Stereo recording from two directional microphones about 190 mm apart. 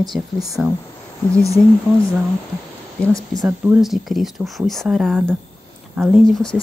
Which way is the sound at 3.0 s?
15° right (ahead or behind).